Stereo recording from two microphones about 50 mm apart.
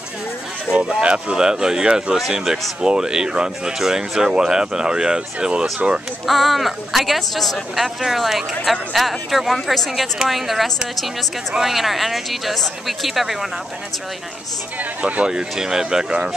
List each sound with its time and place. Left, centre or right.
1.0 s speech: centre
6.2 s speech: centre
14.8 s speech: right
15.3 s speech: centre